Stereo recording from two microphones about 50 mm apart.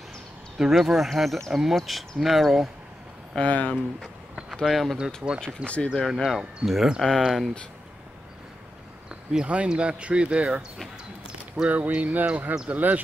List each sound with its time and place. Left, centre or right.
0.7 s speech: centre
3.3 s speech: left
4.6 s speech: centre
4.9 s speech: centre
5.9 s speech: centre
9.1 s speech: centre
11.7 s speech: right